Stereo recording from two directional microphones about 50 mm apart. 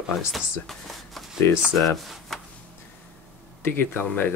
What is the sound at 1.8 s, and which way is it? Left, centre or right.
Speech, centre.